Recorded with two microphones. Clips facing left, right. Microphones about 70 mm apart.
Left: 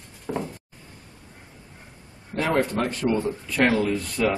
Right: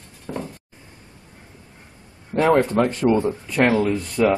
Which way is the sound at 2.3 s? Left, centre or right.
Right.